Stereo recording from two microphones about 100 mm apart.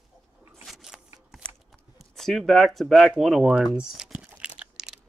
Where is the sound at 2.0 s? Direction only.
Centre (ahead or behind).